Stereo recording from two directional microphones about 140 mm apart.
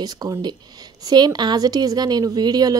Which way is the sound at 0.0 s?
30° right (ahead or behind).